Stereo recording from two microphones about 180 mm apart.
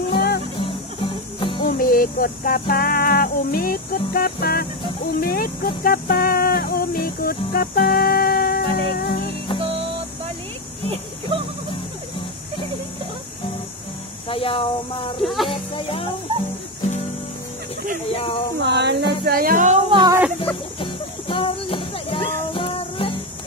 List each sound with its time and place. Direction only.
0.1 s music: 65° left (ahead or behind)
1.4 s music: 25° left (ahead or behind)
1.7 s music: 55° left (ahead or behind)
9.6 s music: 30° right (ahead or behind)
10.9 s a sound: 30° right (ahead or behind)
14.3 s speech: 30° left (ahead or behind)
15.1 s speech: centre (ahead or behind)
15.5 s speech: 30° left (ahead or behind)
18.1 s speech: 30° left (ahead or behind)
18.6 s a sound: 70° right (ahead or behind)
19.2 s music: 55° right (ahead or behind)
19.9 s speech: 25° right (ahead or behind)
20.8 s music: 30° left (ahead or behind)